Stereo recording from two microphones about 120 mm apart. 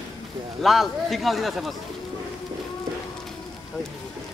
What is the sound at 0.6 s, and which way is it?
Speech, centre (ahead or behind).